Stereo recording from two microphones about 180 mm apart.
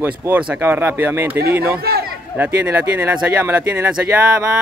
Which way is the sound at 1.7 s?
60° right (ahead or behind).